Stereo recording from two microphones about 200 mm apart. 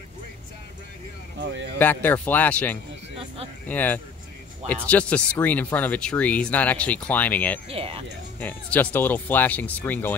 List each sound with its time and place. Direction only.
1.8 s speech: 10° left (ahead or behind)
7.7 s speech: 30° right (ahead or behind)
8.4 s speech: 10° left (ahead or behind)